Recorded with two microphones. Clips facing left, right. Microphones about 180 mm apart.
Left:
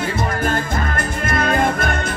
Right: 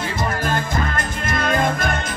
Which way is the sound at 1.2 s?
55° left (ahead or behind).